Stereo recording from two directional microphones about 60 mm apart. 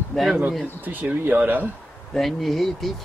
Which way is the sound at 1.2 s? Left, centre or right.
Right.